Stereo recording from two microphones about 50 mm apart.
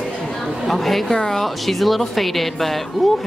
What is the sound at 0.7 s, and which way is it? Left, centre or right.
Speech, centre.